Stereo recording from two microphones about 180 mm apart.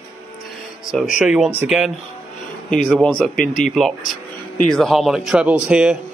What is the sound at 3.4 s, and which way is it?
Speech, 45° left (ahead or behind).